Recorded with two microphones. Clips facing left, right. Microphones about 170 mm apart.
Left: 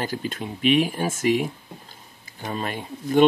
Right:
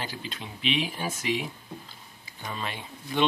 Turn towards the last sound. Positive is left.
turn(degrees=45)  # may be behind; listen again after turning